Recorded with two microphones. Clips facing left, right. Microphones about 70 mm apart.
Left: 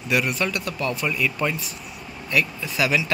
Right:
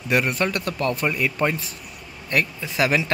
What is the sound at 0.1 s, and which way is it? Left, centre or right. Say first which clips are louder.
Speech: right 2 dB; right.